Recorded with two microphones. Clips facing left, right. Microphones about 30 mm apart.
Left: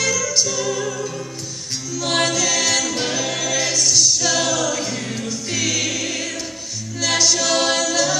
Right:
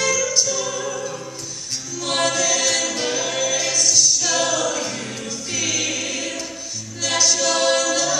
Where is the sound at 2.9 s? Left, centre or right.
Left.